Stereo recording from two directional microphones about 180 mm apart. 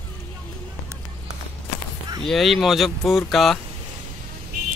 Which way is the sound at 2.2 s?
Centre (ahead or behind).